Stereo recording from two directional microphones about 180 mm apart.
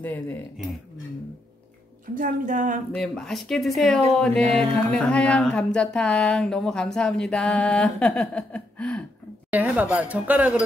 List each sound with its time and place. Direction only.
0.0 s speech: 10° left (ahead or behind)
2.1 s a woman's voice: 50° right (ahead or behind)
2.9 s speech: 5° left (ahead or behind)
9.5 s speech: 10° right (ahead or behind)